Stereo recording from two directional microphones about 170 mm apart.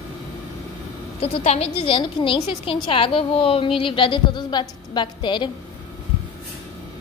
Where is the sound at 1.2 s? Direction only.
35° left (ahead or behind).